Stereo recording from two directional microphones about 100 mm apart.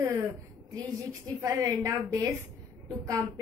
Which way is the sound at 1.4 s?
35° right (ahead or behind).